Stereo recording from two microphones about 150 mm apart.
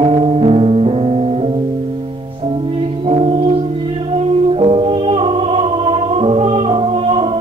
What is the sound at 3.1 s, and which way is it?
Music, 40° right (ahead or behind).